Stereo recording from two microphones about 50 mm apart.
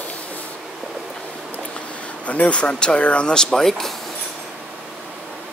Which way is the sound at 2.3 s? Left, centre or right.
Left.